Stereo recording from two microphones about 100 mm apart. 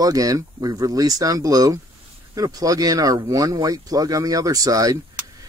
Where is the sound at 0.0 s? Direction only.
35° right (ahead or behind).